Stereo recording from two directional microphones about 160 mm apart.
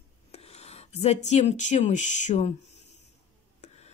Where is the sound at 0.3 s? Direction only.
40° left (ahead or behind).